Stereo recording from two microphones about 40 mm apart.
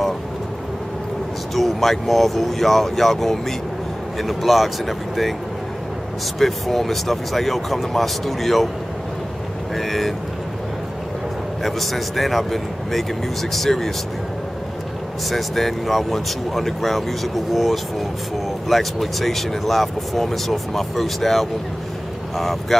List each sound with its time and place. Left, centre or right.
1.5 s speech: centre
6.4 s speech: centre
9.8 s speech: centre
11.6 s speech: centre
15.2 s speech: centre